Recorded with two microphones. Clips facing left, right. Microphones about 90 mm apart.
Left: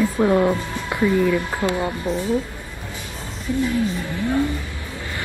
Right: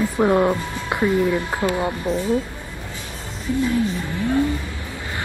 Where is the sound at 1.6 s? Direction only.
25° left (ahead or behind).